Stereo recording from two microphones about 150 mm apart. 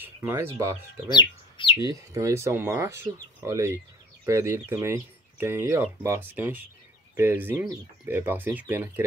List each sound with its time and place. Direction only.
0.0 s chicken: 15° right (ahead or behind)
1.0 s speech: 30° left (ahead or behind)
1.9 s speech: 20° right (ahead or behind)